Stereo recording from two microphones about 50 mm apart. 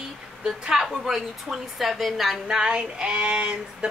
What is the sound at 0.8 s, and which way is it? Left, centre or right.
A woman's voice, centre.